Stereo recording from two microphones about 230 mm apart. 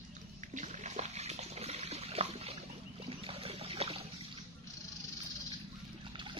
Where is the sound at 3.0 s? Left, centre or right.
Right.